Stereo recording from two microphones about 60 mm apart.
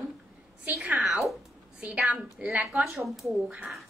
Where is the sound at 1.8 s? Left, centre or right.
Right.